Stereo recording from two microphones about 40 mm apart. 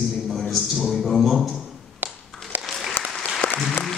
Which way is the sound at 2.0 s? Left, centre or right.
Right.